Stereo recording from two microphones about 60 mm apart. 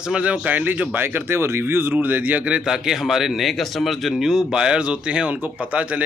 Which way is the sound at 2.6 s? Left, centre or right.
Centre.